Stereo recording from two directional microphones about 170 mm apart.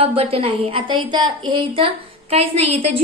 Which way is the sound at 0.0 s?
35° right (ahead or behind).